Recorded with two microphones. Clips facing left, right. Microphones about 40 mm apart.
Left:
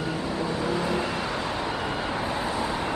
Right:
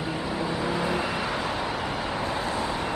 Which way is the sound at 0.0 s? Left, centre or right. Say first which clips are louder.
Left 1 dB; centre.